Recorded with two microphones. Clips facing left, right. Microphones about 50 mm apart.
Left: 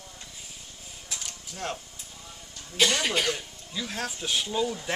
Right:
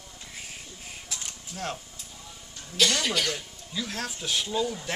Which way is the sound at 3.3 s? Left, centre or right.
Centre.